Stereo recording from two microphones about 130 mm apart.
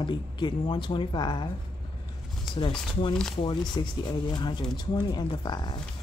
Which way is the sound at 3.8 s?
35° left (ahead or behind).